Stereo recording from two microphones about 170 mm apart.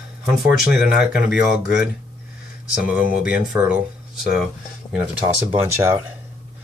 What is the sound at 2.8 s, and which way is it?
Speech, 10° right (ahead or behind).